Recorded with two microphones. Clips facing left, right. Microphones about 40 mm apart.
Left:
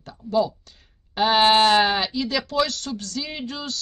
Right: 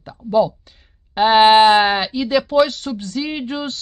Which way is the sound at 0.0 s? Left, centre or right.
Centre.